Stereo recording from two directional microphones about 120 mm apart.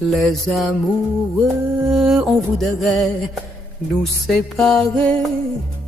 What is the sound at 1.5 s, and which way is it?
Music, 25° right (ahead or behind).